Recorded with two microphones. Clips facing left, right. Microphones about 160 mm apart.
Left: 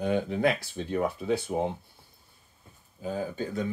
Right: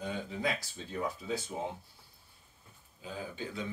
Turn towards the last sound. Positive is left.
turn(degrees=45)  # may be behind; listen again after turning